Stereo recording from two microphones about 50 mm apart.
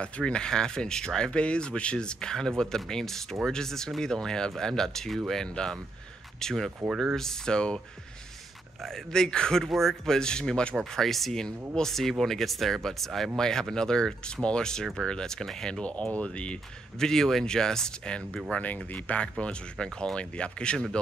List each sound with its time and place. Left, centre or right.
0.0 s speech: centre
8.8 s speech: centre
10.8 s speech: centre
15.8 s speech: left
17.0 s speech: centre
18.5 s speech: left